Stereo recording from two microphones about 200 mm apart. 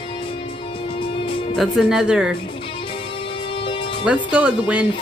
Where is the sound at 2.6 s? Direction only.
25° left (ahead or behind).